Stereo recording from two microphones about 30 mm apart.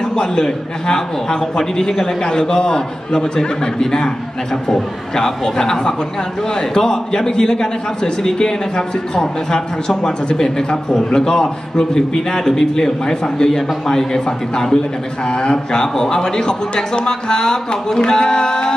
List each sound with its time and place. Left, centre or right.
0.1 s a man's voice: left
5.6 s a man's voice: left